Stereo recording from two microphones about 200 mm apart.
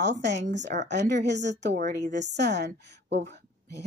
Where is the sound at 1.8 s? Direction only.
40° right (ahead or behind).